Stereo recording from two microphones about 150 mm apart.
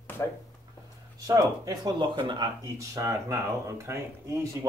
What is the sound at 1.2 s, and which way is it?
Speech, 25° right (ahead or behind).